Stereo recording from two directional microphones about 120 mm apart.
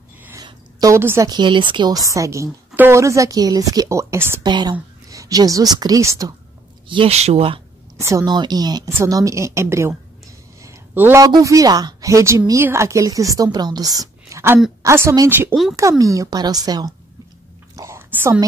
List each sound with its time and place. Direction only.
0.4 s a sound: 35° right (ahead or behind)
1.3 s a woman's voice: 40° right (ahead or behind); by 4.4 s 20° right (ahead or behind)
4.4 s speech: 35° right (ahead or behind)
6.9 s speech: 45° right (ahead or behind)
7.2 s speech: 60° right (ahead or behind)
8.0 s a woman's voice: 25° right (ahead or behind)
8.3 s a woman's voice: 35° right (ahead or behind)
17.7 s whispering: 20° right (ahead or behind)